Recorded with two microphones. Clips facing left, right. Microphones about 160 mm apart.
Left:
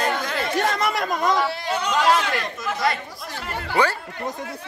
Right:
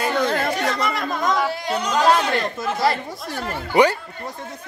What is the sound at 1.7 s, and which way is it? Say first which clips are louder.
Speech: right 2 dB; 35° right (ahead or behind).